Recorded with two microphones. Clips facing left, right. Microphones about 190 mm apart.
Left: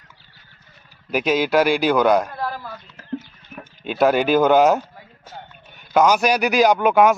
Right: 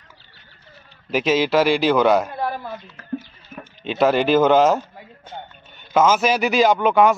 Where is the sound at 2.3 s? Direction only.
20° right (ahead or behind).